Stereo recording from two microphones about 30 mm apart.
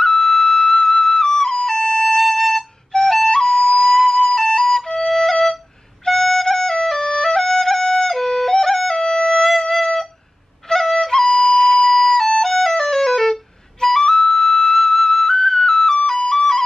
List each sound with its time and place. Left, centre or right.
0.0 s flute: centre
2.1 s music: centre
2.9 s flute: centre
4.6 s flute: centre
4.8 s flute: centre
6.0 s music: centre
10.7 s flute: centre
12.3 s music: centre